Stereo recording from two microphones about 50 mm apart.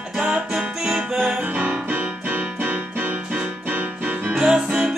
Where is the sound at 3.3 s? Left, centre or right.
Right.